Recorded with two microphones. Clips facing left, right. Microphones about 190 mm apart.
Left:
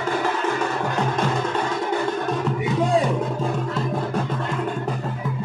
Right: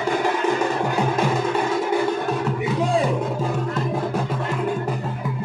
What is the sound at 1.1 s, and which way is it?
Music, 10° right (ahead or behind).